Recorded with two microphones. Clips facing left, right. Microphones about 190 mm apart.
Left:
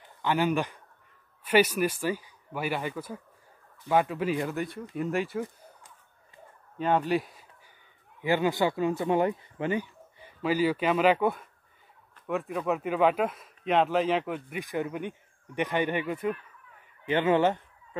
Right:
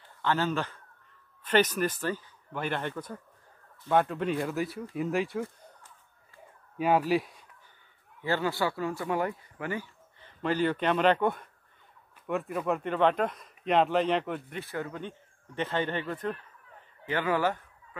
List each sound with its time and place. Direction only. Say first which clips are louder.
0.2 s speech: left 2 dB; 15° left (ahead or behind)
6.8 s speech: right 1 dB; 5° right (ahead or behind)
8.2 s speech: left 4 dB; 15° left (ahead or behind)
10.4 s speech: left 2 dB; 5° left (ahead or behind)
14.6 s speech: left 4 dB; 15° left (ahead or behind)
17.1 s speech: left 4 dB; 20° left (ahead or behind)